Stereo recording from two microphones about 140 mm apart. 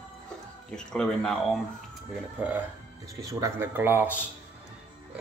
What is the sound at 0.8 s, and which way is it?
Speech, 5° left (ahead or behind).